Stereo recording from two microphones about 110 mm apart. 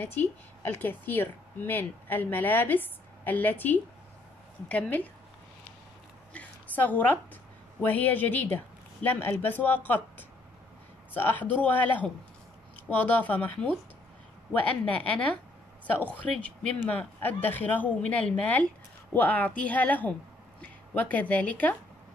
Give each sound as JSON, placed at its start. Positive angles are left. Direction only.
{"t": 0.0, "sound": "a woman's voice", "side_deg": 15}
{"t": 6.3, "sound": "a sound", "side_deg": 15}
{"t": 7.8, "sound": "a woman's voice", "side_deg": 15}
{"t": 14.9, "sound": "a woman's voice", "side_deg": 10}